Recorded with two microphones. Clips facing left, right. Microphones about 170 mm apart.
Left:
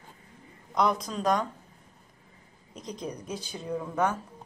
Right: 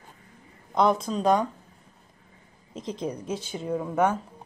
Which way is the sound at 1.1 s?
30° right (ahead or behind).